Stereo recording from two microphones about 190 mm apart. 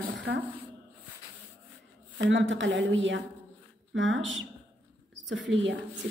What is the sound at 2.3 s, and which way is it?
A woman's voice, 80° right.